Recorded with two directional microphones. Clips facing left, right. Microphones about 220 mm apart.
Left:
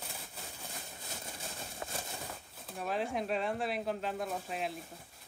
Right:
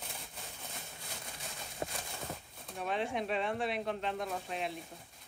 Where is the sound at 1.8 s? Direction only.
25° right (ahead or behind).